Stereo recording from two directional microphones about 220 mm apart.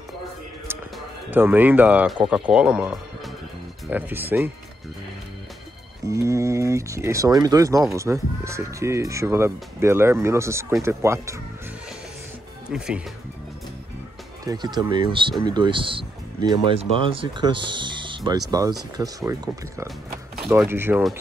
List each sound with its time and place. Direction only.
1.3 s speech: 10° right (ahead or behind)
6.0 s speech: 15° right (ahead or behind)
12.6 s speech: 5° right (ahead or behind)
14.4 s speech: 15° right (ahead or behind)